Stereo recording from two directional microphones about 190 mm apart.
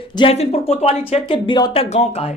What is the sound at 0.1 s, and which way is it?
A woman's voice, 30° left (ahead or behind).